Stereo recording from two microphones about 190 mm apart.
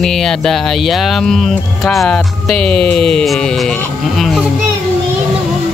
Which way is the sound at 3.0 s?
Centre (ahead or behind).